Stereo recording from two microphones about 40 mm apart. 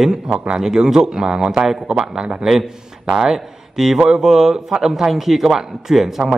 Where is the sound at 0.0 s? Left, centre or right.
Centre.